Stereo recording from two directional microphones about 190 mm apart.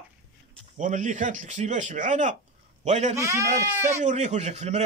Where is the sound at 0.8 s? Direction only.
40° right (ahead or behind).